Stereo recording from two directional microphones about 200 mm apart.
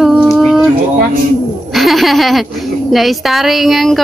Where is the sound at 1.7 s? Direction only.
Centre (ahead or behind).